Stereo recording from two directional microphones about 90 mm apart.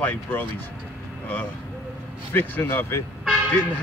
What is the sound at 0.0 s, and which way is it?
Speech, 20° left (ahead or behind).